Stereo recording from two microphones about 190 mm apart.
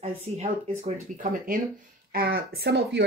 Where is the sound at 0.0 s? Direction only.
35° right (ahead or behind).